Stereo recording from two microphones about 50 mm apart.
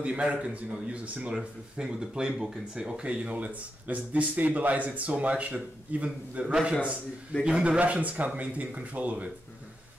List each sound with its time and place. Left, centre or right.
0.0 s a man's voice: right
6.5 s a man's voice: centre